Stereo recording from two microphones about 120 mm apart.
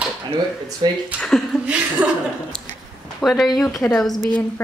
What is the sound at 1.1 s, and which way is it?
Speech, 5° left (ahead or behind).